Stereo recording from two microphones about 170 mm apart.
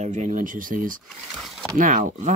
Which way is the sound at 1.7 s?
50° right (ahead or behind).